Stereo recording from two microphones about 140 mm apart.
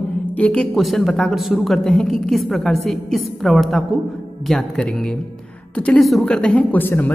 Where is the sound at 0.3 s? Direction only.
10° left (ahead or behind).